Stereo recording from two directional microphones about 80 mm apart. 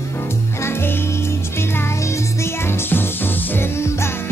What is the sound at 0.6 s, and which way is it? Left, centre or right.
Music, left.